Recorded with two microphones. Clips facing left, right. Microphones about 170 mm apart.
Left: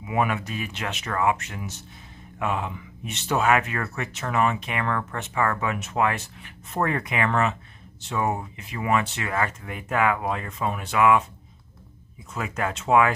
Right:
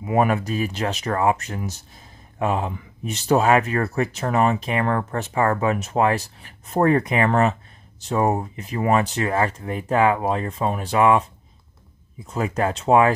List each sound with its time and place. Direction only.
0.0 s speech: 40° right (ahead or behind)
12.3 s speech: 35° right (ahead or behind)